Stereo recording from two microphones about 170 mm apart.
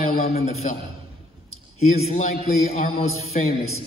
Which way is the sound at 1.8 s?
40° left (ahead or behind).